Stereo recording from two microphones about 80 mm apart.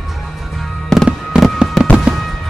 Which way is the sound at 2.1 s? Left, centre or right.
Centre.